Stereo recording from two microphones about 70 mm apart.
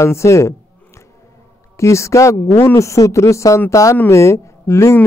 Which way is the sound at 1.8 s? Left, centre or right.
Left.